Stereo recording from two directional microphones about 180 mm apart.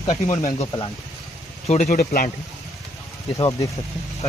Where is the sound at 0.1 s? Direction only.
40° left (ahead or behind).